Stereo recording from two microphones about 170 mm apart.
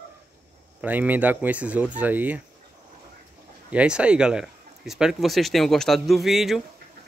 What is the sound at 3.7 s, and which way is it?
Speech, 5° right (ahead or behind).